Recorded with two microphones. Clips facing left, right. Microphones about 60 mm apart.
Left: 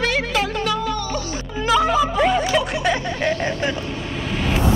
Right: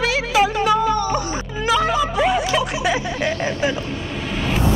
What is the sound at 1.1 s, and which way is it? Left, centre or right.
Music, right.